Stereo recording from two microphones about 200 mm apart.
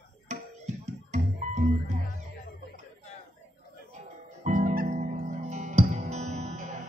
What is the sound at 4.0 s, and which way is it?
Music, 40° right (ahead or behind).